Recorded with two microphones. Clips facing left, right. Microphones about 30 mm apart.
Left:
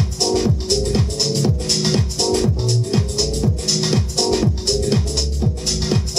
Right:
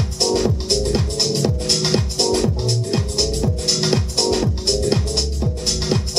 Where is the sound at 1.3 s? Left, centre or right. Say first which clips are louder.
Even; centre.